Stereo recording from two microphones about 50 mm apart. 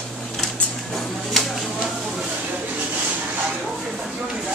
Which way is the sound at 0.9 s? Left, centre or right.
Centre.